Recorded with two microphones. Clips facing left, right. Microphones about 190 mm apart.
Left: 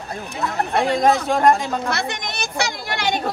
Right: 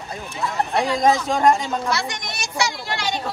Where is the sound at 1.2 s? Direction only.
Centre (ahead or behind).